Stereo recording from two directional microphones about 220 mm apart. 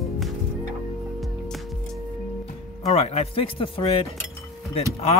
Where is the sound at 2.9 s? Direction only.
30° left (ahead or behind).